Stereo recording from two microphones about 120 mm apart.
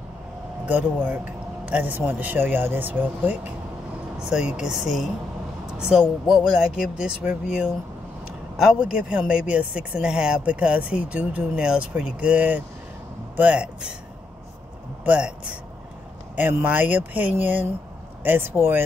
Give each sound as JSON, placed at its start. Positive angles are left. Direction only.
{"t": 0.7, "sound": "speech", "side_deg": -10}
{"t": 15.0, "sound": "speech", "side_deg": -10}